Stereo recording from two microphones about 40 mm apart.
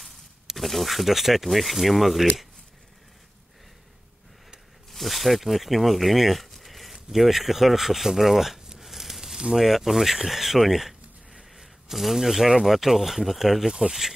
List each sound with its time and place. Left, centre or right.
0.0 s speech: centre
4.9 s speech: centre